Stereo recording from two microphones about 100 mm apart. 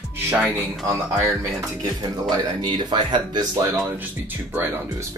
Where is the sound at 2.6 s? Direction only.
45° right (ahead or behind).